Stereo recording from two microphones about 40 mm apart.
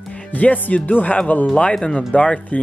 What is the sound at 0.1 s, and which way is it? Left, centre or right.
Speech, left.